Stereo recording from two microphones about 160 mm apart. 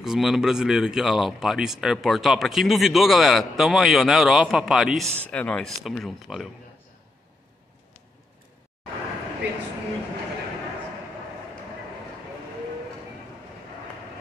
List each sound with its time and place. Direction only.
0.0 s speech: 5° right (ahead or behind)